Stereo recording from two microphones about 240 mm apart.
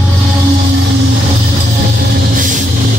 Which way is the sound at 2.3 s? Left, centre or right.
Right.